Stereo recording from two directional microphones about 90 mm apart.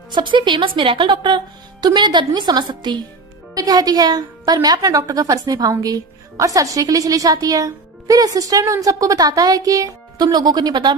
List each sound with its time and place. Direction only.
0.1 s a woman's voice: 60° right (ahead or behind)